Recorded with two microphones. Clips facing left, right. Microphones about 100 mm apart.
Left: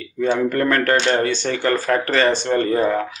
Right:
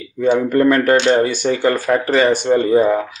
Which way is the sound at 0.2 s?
15° right (ahead or behind).